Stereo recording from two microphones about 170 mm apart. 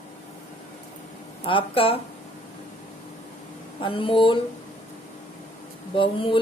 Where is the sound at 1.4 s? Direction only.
30° left (ahead or behind).